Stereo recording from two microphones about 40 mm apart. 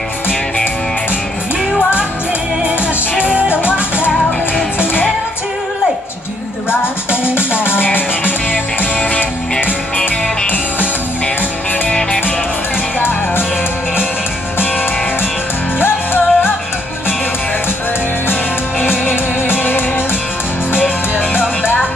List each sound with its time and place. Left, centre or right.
3.4 s music: left
6.7 s music: left
15.8 s music: left
18.8 s music: left